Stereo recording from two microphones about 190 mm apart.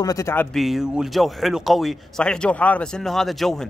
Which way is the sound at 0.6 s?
Centre (ahead or behind).